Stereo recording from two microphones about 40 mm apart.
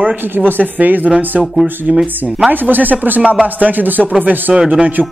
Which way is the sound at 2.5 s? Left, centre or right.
Right.